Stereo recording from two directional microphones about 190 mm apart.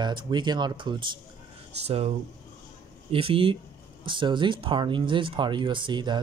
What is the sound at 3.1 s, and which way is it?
Speech, 30° right (ahead or behind).